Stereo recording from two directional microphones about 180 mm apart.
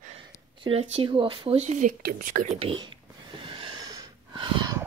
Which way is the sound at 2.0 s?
50° right (ahead or behind).